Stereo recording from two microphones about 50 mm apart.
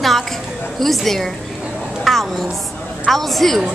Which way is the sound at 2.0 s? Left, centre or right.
Centre.